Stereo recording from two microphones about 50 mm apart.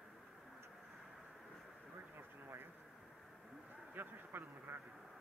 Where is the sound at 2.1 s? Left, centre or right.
Right.